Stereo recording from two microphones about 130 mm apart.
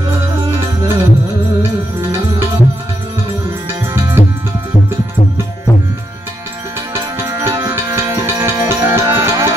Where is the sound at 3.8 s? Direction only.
20° right (ahead or behind).